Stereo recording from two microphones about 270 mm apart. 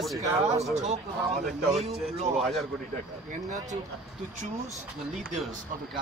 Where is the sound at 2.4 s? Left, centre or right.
Centre.